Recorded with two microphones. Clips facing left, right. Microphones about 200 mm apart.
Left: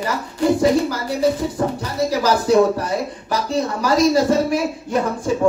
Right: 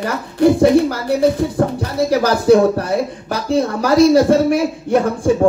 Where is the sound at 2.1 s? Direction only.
60° right (ahead or behind).